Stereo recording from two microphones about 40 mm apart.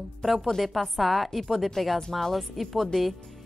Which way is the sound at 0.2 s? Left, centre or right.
Centre.